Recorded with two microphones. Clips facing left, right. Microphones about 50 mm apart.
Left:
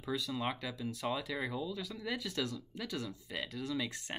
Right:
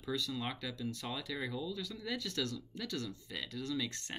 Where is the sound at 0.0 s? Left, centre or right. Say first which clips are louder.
Left 2 dB; centre.